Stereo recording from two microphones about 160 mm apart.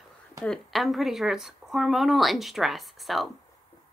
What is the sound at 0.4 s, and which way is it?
Speech, centre (ahead or behind).